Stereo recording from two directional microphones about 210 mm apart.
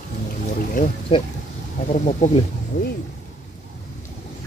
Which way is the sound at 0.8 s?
40° left (ahead or behind).